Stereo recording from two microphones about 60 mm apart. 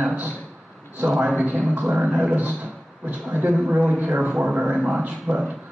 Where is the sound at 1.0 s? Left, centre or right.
Centre.